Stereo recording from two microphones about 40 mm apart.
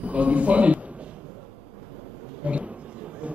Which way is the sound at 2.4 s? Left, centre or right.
Right.